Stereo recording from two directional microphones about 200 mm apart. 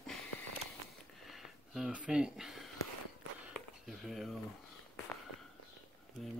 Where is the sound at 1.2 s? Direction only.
Centre (ahead or behind).